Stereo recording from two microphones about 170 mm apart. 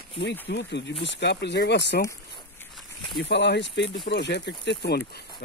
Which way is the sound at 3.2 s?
85° left.